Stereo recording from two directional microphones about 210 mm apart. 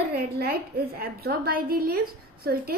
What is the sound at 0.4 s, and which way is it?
A woman's voice, 45° right (ahead or behind).